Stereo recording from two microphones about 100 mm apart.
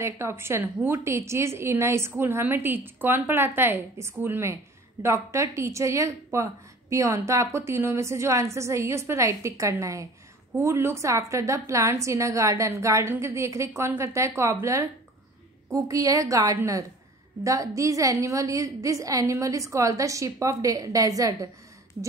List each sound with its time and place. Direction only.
0.0 s a woman's voice: 25° right (ahead or behind)